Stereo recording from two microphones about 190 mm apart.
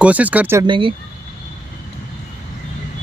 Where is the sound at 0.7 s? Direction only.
25° right (ahead or behind).